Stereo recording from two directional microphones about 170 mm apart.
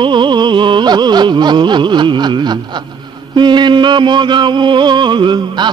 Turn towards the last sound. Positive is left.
turn(degrees=-25)  # may be behind; listen again after turning